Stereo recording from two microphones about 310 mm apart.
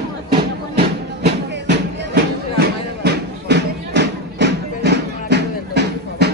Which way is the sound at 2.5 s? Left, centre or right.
Right.